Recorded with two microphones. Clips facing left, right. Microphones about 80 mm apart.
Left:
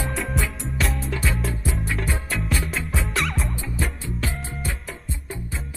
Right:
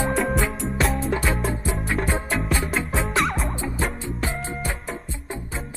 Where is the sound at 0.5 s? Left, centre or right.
Centre.